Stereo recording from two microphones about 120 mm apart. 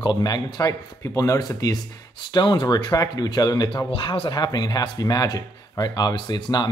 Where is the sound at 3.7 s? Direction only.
45° left (ahead or behind).